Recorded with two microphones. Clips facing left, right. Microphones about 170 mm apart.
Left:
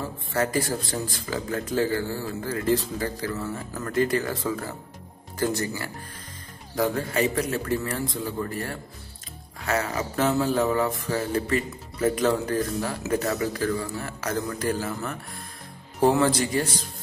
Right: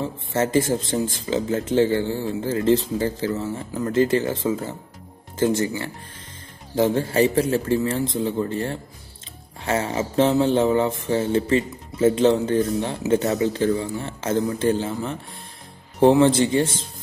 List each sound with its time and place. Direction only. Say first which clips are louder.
0.0 s speech: right 3 dB; 20° right (ahead or behind)
6.7 s speech: right 5 dB; 25° right (ahead or behind)
16.0 s speech: right 6 dB; 25° right (ahead or behind)